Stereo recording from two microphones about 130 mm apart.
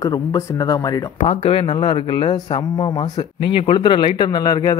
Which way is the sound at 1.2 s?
50° left (ahead or behind).